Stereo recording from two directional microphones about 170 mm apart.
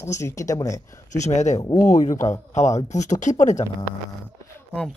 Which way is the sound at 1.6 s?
20° left (ahead or behind).